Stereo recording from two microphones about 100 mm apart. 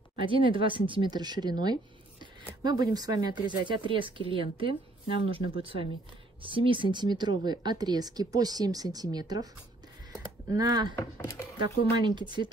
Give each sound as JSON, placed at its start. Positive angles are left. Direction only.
{"t": 0.2, "sound": "speech", "side_deg": -60}
{"t": 11.0, "sound": "speech", "side_deg": 30}
{"t": 12.0, "sound": "speech", "side_deg": -50}